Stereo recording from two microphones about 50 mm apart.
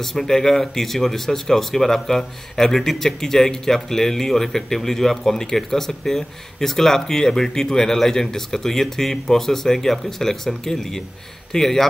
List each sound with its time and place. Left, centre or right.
0.0 s speech: centre